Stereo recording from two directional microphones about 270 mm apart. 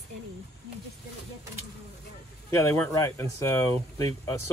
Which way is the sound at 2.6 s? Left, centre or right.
Centre.